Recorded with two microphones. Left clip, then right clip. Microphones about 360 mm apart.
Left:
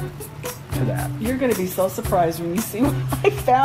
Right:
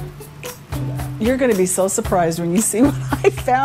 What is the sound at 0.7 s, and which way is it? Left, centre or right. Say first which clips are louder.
Music: left 6 dB; centre.